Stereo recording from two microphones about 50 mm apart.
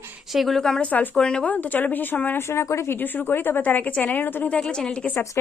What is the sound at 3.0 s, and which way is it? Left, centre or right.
Speech, left.